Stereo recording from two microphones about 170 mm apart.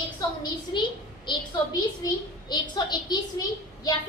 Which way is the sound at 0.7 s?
25° left (ahead or behind).